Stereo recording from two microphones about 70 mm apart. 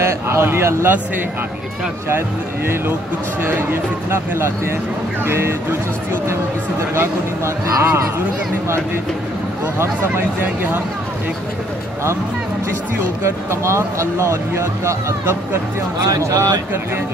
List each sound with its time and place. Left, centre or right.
0.0 s speech: right
3.4 s speech: right
7.0 s speech: right
9.8 s speech: right
13.2 s speech: right
16.2 s speech: right